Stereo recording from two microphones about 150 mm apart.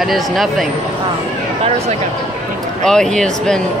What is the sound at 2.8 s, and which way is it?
Speech, 5° left (ahead or behind).